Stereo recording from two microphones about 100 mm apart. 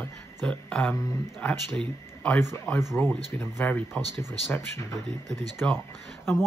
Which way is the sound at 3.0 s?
20° left (ahead or behind).